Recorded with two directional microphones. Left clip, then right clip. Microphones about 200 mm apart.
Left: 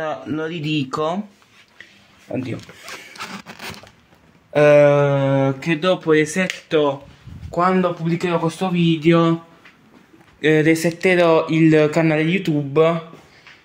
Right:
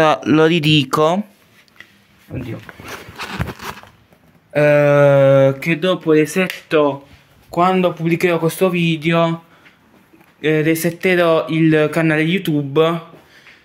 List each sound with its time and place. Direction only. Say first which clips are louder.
0.0 s speech: right 12 dB; 50° right (ahead or behind); by 1.2 s 35° right (ahead or behind)
4.5 s speech: left 1 dB; 5° right (ahead or behind)
4.9 s a sound: right 7 dB; 30° right (ahead or behind)
5.3 s speech: right 7 dB; 40° right (ahead or behind)
5.7 s speech: right 1 dB; 15° right (ahead or behind)
6.2 s speech: right 3 dB; centre (ahead or behind)
7.5 s speech: right 3 dB; 35° right (ahead or behind)
9.0 s speech: left 1 dB; 20° right (ahead or behind)
10.4 s speech: left 1 dB; 5° right (ahead or behind)